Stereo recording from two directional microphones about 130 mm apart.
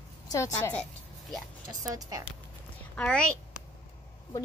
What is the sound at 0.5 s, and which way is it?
Speech, 15° left (ahead or behind).